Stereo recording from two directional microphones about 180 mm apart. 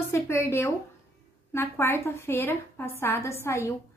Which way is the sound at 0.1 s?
15° left (ahead or behind).